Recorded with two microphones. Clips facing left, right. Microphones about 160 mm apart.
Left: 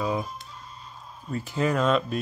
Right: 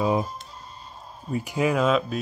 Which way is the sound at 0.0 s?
25° right (ahead or behind).